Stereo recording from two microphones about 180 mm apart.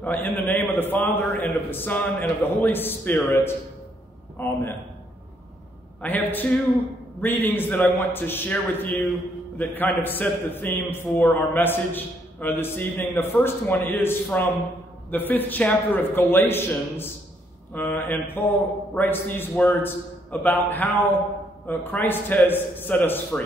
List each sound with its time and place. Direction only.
0.0 s a man's voice: 10° left (ahead or behind)
6.0 s a man's voice: 10° left (ahead or behind)